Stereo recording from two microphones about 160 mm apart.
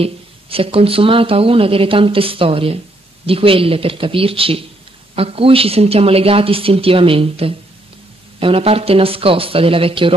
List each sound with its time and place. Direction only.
0.0 s speech: 35° right (ahead or behind)